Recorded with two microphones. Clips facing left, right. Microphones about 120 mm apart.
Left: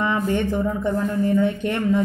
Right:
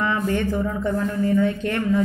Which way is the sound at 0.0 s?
20° left (ahead or behind).